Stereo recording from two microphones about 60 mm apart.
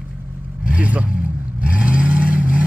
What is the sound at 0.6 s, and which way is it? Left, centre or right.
Vehicle, right.